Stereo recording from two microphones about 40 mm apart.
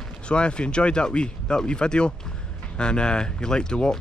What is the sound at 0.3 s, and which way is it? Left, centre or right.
Speech, left.